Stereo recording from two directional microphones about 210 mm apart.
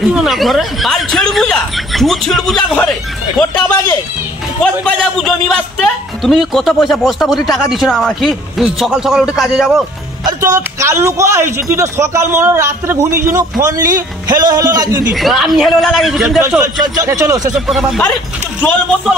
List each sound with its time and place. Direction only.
0.0 s a man's voice: centre (ahead or behind)
10.2 s a man's voice: 15° right (ahead or behind)
15.1 s a man's voice: centre (ahead or behind)
17.6 s a man's voice: centre (ahead or behind)